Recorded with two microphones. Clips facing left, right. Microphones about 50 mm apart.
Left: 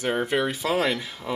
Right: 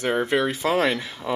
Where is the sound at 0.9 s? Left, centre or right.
Right.